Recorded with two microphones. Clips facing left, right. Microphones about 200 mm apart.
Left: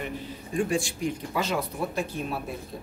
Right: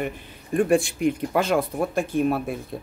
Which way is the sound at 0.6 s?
55° right (ahead or behind).